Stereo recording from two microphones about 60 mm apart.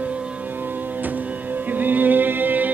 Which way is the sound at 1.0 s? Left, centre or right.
Right.